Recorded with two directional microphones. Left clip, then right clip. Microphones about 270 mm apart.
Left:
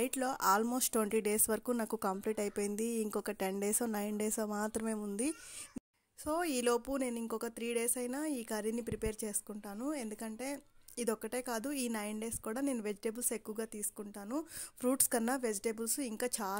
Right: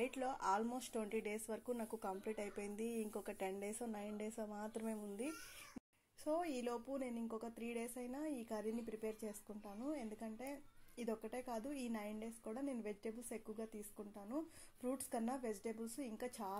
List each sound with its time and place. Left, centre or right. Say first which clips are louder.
0.0 s speech: left 8 dB; left
6.2 s speech: left 8 dB; left